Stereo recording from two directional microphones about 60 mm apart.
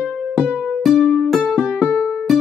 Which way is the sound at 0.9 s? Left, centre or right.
Left.